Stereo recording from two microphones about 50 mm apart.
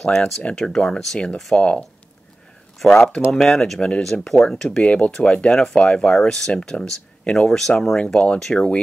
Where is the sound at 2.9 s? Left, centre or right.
Centre.